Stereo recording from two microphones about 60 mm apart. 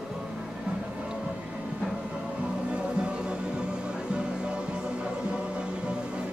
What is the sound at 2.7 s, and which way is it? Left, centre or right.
Music, centre.